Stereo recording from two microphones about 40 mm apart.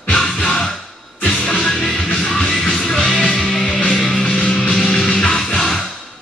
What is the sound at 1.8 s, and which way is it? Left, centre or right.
Music, centre.